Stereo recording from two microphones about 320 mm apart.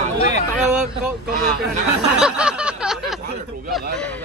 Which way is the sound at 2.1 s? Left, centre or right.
Centre.